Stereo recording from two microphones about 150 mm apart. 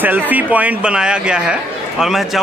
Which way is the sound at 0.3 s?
10° right (ahead or behind).